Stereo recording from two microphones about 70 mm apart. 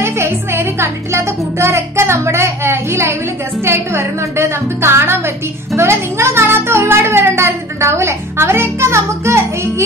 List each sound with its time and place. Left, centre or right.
0.0 s music: right
3.6 s speech: right
5.8 s music: right